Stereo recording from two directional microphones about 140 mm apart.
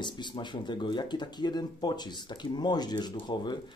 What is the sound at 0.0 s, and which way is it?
Speech, 35° left (ahead or behind).